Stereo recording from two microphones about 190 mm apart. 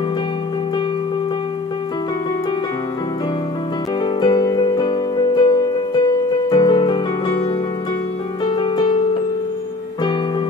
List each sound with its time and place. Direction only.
4.0 s music: 20° left (ahead or behind)
8.5 s music: 25° left (ahead or behind)